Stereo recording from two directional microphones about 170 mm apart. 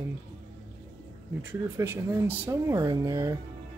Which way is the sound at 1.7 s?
15° right (ahead or behind).